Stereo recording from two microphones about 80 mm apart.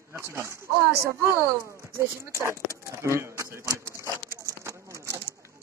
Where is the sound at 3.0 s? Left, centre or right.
Right.